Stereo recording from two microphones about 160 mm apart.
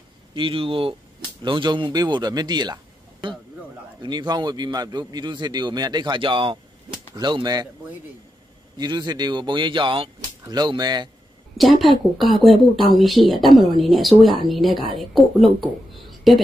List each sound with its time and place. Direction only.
0.3 s a man's voice: 30° right (ahead or behind)
8.7 s speech: 25° right (ahead or behind)
11.5 s a woman's voice: centre (ahead or behind)